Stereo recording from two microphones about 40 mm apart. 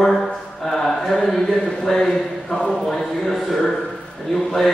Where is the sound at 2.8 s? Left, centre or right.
Centre.